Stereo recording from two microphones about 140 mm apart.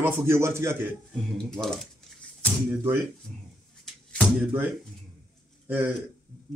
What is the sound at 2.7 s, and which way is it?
Speech, 15° right (ahead or behind).